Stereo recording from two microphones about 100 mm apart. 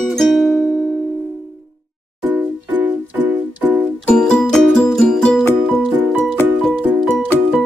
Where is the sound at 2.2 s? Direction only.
20° right (ahead or behind).